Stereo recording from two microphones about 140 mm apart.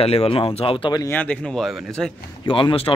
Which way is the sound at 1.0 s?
10° left (ahead or behind).